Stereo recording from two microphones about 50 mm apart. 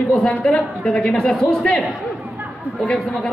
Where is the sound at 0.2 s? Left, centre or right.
Left.